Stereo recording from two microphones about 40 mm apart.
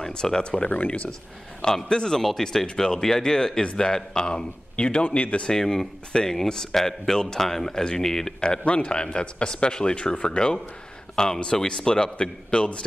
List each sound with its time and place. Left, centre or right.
0.0 s speech: centre
0.7 s speech: left
1.6 s a man's voice: centre
5.5 s a man's voice: centre